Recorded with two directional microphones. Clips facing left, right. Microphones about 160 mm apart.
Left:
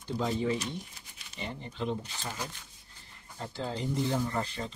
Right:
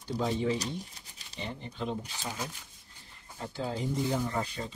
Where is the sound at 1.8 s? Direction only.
10° right (ahead or behind).